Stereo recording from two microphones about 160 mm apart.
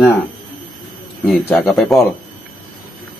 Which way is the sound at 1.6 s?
Centre (ahead or behind).